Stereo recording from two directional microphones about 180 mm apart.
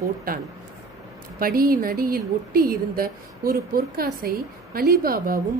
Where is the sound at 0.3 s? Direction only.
55° right (ahead or behind).